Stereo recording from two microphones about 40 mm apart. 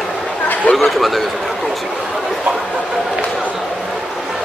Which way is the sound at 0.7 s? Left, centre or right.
Centre.